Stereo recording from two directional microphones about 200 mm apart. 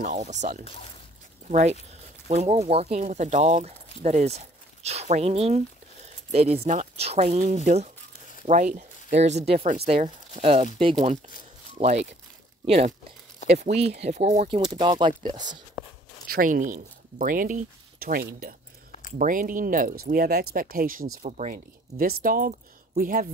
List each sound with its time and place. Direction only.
0.0 s speech: 35° right (ahead or behind)
14.6 s speech: 20° right (ahead or behind)
16.3 s speech: 45° right (ahead or behind)
21.2 s speech: 35° right (ahead or behind)